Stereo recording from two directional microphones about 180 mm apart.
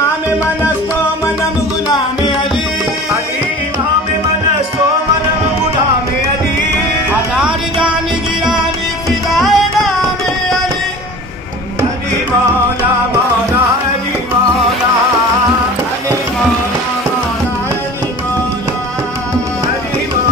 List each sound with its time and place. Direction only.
7.3 s music: 5° right (ahead or behind)
9.3 s music: centre (ahead or behind)